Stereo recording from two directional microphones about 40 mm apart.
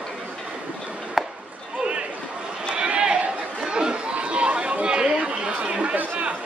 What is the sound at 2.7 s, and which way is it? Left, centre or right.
Chatter, right.